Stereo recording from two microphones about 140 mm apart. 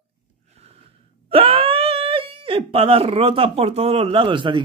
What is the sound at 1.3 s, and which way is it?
Speech, 40° right (ahead or behind).